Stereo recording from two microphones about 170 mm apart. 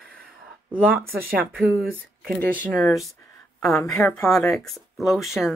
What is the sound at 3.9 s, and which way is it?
Speech, 5° left (ahead or behind).